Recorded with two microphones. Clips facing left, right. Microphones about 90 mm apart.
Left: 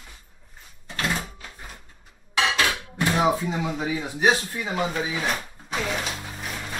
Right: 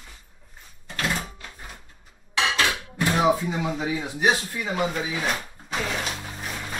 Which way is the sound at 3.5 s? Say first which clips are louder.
Even; 20° right (ahead or behind).